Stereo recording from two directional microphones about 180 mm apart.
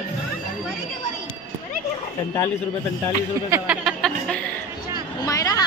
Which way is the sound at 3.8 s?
5° left (ahead or behind).